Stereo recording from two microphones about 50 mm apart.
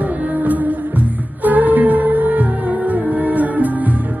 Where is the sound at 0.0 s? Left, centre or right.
Right.